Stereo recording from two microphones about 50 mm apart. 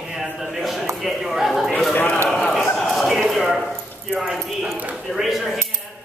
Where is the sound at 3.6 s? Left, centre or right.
Centre.